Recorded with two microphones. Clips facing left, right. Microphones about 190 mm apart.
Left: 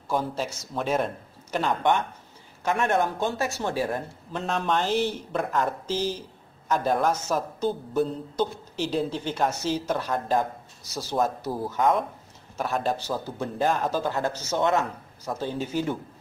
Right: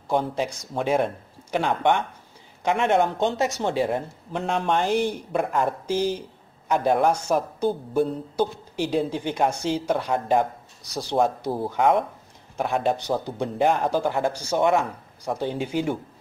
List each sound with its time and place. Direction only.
0.1 s speech: 15° right (ahead or behind)
12.5 s speech: 15° right (ahead or behind)